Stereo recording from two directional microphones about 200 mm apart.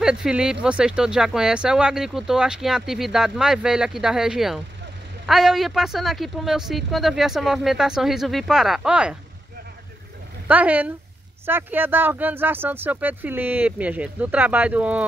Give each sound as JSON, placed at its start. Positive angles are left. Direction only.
{"t": 0.0, "sound": "speech", "side_deg": -5}
{"t": 10.5, "sound": "speech", "side_deg": -10}